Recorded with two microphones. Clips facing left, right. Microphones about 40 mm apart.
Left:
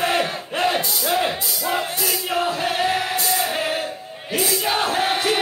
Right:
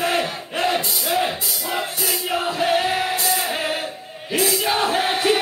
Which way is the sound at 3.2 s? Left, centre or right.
Centre.